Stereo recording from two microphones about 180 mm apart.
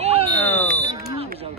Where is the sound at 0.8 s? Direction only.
35° right (ahead or behind).